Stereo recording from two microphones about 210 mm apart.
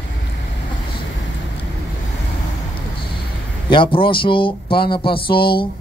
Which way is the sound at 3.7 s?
25° left (ahead or behind).